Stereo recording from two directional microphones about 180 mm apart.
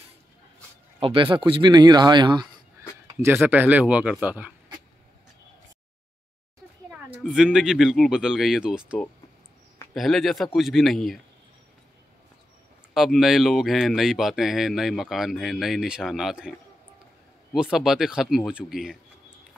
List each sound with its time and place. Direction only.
1.0 s speech: 30° right (ahead or behind)
3.3 s speech: 10° right (ahead or behind)
7.3 s speech: 5° right (ahead or behind)
9.9 s speech: centre (ahead or behind)
12.9 s speech: centre (ahead or behind)